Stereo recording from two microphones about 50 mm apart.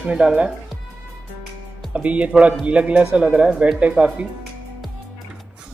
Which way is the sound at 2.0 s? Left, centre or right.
Right.